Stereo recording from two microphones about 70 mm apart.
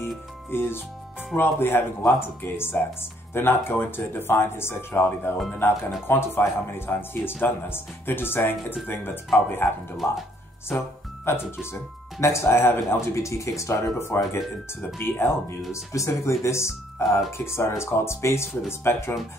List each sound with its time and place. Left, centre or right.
0.5 s speech: left
11.3 s speech: left
15.7 s speech: left